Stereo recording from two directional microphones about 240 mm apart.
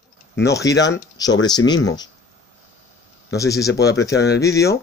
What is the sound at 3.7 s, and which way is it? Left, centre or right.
Speech, left.